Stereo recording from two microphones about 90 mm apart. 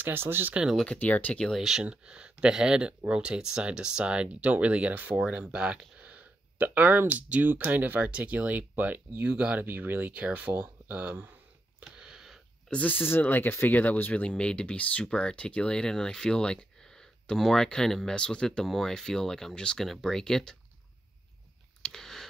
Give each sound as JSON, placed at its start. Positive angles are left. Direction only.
{"t": 0.0, "sound": "speech", "side_deg": -25}
{"t": 0.9, "sound": "speech", "side_deg": 20}
{"t": 1.5, "sound": "speech", "side_deg": -5}
{"t": 11.8, "sound": "a sound", "side_deg": -10}
{"t": 12.6, "sound": "speech", "side_deg": 15}
{"t": 21.8, "sound": "a sound", "side_deg": 5}